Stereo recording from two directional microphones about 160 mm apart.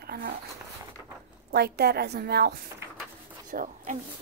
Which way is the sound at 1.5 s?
80° right.